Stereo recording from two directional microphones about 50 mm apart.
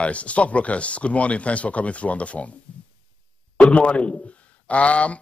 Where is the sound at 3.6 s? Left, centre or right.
Left.